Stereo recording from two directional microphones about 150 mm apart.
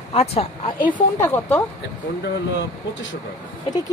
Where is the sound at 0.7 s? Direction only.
65° left (ahead or behind).